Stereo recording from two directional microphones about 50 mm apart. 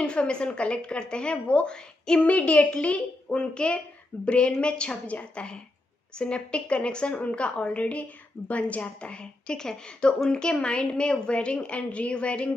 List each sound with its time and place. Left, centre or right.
0.0 s a woman's voice: centre
2.2 s a woman's voice: left
4.1 s speech: left
4.6 s a woman's voice: left